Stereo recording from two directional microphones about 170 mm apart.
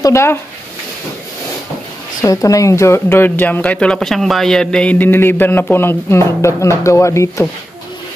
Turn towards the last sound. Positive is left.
turn(degrees=15)  # may be behind; listen again after turning